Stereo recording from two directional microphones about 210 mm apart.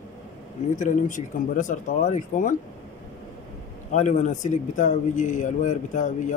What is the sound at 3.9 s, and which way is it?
Speech, 35° left (ahead or behind).